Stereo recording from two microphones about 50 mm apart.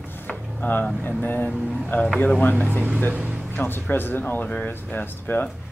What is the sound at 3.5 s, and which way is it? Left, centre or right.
Speech, left.